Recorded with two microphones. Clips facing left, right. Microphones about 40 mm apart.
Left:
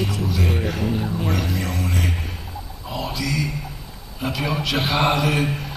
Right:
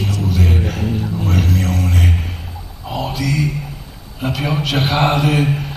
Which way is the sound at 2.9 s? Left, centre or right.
Right.